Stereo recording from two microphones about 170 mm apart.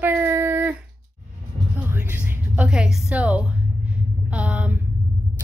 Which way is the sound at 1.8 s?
10° right (ahead or behind).